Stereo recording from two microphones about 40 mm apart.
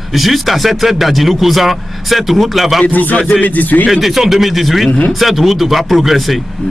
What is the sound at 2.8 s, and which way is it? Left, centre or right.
Speech, left.